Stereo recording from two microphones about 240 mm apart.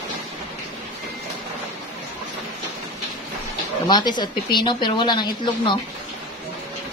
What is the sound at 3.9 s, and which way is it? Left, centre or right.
Speech, centre.